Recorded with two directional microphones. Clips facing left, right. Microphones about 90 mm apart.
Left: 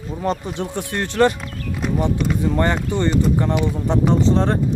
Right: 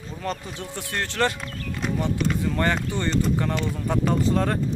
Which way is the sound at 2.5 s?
20° left (ahead or behind).